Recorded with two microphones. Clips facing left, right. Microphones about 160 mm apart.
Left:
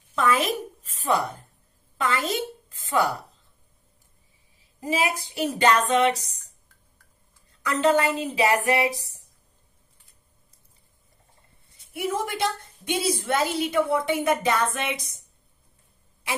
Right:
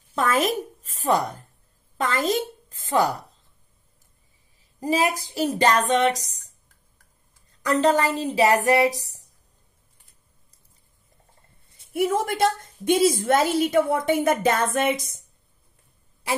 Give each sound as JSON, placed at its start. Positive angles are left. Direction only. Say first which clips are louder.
{"t": 0.1, "sound": "a woman's voice", "louder": "right 1 dB", "side_deg": -40}
{"t": 4.7, "sound": "speech", "louder": "right 3 dB", "side_deg": -40}
{"t": 7.6, "sound": "speech", "louder": "right 1 dB", "side_deg": -40}
{"t": 11.9, "sound": "a woman's voice", "louder": "right 5 dB", "side_deg": -45}